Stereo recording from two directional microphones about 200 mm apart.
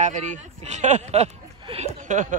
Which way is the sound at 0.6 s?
35° right (ahead or behind).